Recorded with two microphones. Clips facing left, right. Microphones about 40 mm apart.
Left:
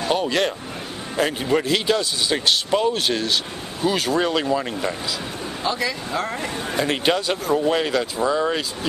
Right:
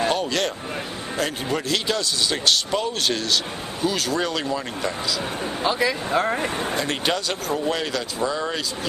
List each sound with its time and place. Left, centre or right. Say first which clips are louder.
0.1 s a sound: left 3 dB; centre
1.1 s speech: left 5 dB; centre
5.6 s speech: right 2 dB; centre
6.8 s speech: left 7 dB; centre